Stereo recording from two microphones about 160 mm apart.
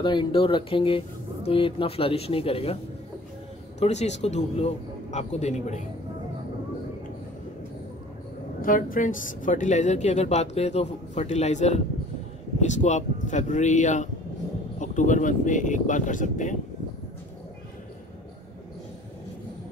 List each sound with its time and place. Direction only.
0.0 s speech: 30° left (ahead or behind)
3.8 s speech: 45° left (ahead or behind)
8.5 s speech: 60° left (ahead or behind)
12.8 s speech: 50° left (ahead or behind)